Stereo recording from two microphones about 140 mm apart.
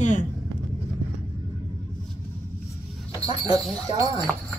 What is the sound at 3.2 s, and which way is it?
Speech, 25° right (ahead or behind).